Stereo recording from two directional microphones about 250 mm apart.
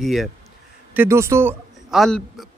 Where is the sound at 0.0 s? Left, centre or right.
Centre.